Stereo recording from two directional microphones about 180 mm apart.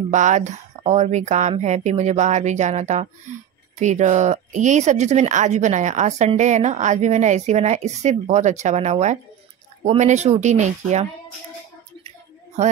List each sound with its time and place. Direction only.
0.1 s speech: 40° right (ahead or behind)